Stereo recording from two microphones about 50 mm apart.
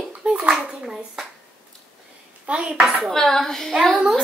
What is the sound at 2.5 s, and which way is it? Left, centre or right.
Speech, right.